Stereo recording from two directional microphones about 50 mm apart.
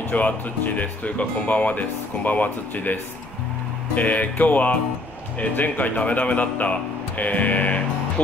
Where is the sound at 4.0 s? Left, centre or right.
Left.